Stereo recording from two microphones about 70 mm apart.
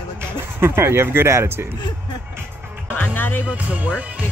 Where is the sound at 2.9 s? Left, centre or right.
Left.